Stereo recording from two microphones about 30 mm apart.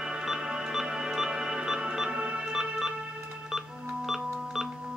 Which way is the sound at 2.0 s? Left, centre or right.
Right.